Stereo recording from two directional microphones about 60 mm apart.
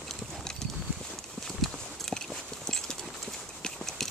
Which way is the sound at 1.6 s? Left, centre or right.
Centre.